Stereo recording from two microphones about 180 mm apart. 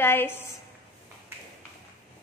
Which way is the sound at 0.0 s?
15° left (ahead or behind).